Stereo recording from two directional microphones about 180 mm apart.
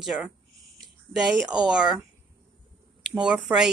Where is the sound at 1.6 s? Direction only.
5° right (ahead or behind).